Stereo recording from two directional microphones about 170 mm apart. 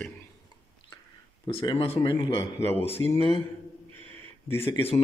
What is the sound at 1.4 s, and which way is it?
Speech, 30° left (ahead or behind).